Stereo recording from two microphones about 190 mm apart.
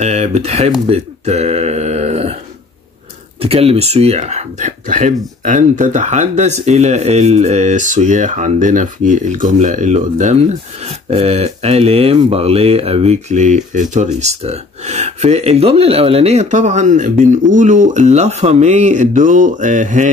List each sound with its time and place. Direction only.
0.0 s speech: 35° right (ahead or behind)
0.7 s a sound: 30° right (ahead or behind)
3.4 s speech: 30° right (ahead or behind)